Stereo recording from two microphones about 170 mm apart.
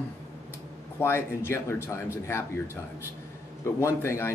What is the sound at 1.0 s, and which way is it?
A man's voice, 15° left (ahead or behind).